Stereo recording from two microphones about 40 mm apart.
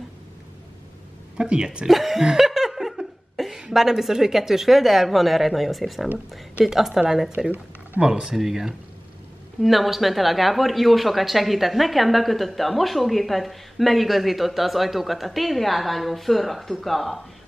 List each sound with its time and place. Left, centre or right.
1.4 s speech: right
1.9 s a woman's voice: centre